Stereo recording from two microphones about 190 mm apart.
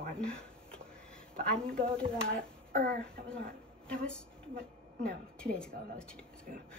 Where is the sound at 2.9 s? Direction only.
5° left (ahead or behind).